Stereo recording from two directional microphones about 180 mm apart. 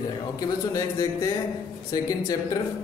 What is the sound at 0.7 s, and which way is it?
A man's voice, 20° left (ahead or behind).